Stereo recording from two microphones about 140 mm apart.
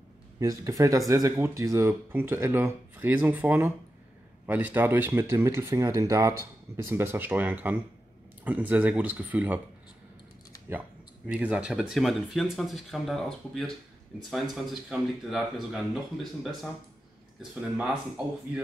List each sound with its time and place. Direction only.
0.4 s speech: 25° right (ahead or behind)
11.2 s speech: 10° right (ahead or behind)
17.4 s speech: 5° right (ahead or behind)